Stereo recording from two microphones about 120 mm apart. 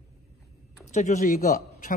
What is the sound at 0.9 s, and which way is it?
Speech, 80° left.